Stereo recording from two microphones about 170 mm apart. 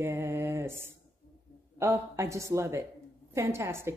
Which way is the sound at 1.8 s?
15° right (ahead or behind).